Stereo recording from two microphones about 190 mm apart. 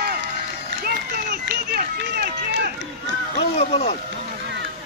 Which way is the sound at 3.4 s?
30° left (ahead or behind).